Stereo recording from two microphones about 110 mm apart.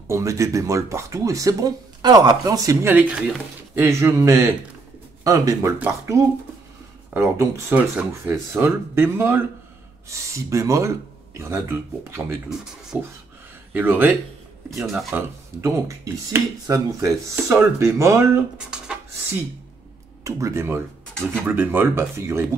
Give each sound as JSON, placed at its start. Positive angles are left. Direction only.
{"t": 0.1, "sound": "speech", "side_deg": -30}
{"t": 2.9, "sound": "speech", "side_deg": -15}
{"t": 3.7, "sound": "speech", "side_deg": -25}
{"t": 14.8, "sound": "speech", "side_deg": 0}
{"t": 15.1, "sound": "speech", "side_deg": -25}
{"t": 18.7, "sound": "a sound", "side_deg": -10}
{"t": 20.2, "sound": "speech", "side_deg": -30}